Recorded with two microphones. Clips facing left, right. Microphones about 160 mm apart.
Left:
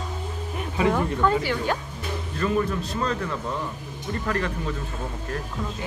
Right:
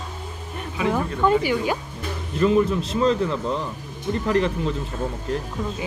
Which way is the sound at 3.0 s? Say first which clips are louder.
Right 9 dB; 25° right (ahead or behind).